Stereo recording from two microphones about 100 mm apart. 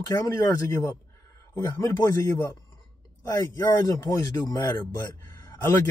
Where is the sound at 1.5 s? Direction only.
25° left (ahead or behind).